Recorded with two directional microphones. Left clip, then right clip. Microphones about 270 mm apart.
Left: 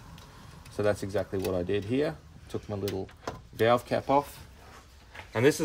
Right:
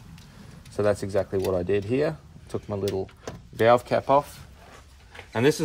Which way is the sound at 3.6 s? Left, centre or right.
Centre.